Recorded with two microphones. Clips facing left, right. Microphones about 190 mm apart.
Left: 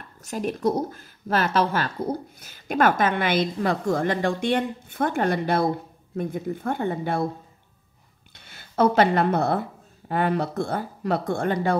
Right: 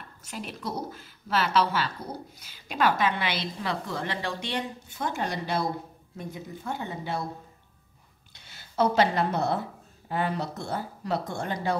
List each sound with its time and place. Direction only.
0.2 s speech: 45° left (ahead or behind)
8.4 s speech: 55° left (ahead or behind)